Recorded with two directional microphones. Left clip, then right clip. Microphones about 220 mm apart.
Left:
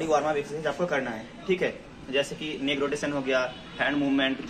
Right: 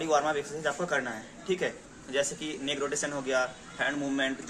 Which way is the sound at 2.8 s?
10° right (ahead or behind).